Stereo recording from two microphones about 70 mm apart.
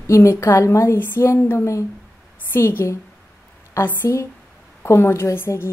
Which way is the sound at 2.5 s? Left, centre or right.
Left.